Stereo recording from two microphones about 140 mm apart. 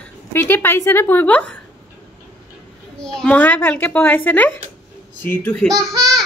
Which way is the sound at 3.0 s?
10° left (ahead or behind).